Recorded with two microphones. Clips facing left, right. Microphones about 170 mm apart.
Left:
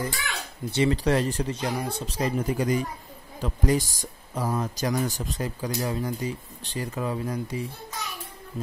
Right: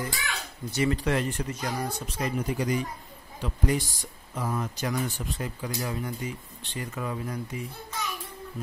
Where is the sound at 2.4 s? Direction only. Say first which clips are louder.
Left 2 dB; 45° left (ahead or behind); by 7.7 s 30° left (ahead or behind).